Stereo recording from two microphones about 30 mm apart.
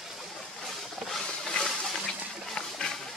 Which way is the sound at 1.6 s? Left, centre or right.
Left.